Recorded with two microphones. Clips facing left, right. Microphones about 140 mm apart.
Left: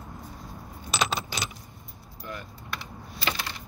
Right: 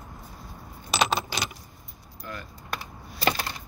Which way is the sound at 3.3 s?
40° right (ahead or behind).